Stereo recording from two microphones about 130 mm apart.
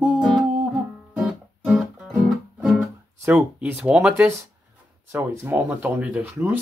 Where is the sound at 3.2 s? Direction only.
15° right (ahead or behind).